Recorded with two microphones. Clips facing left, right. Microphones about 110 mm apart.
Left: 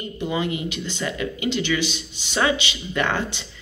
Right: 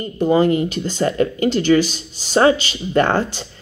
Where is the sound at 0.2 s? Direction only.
45° right (ahead or behind).